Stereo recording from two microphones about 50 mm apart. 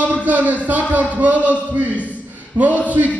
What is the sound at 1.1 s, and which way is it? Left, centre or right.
A man's voice, right.